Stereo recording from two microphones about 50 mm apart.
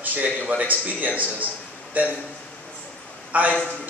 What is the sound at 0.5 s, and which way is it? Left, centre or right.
Speech, right.